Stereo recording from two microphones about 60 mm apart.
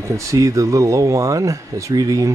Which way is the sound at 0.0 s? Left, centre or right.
Right.